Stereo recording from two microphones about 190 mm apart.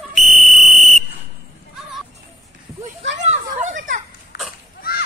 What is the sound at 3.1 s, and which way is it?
Children playing, 40° right (ahead or behind).